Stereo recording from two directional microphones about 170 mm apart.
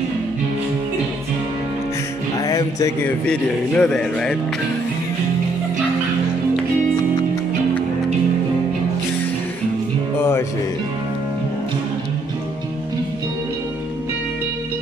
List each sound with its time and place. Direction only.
2.3 s music: 20° left (ahead or behind)
3.3 s speech: 5° left (ahead or behind)